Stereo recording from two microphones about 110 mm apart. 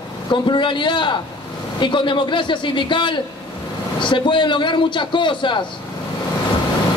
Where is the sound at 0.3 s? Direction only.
45° left (ahead or behind).